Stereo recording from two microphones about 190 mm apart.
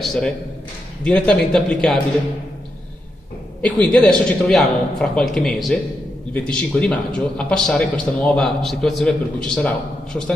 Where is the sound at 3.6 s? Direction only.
5° left (ahead or behind).